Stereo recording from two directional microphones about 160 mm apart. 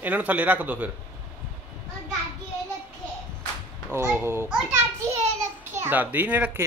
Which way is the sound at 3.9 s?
15° right (ahead or behind).